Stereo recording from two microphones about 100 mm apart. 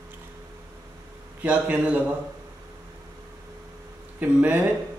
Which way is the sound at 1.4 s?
15° right (ahead or behind).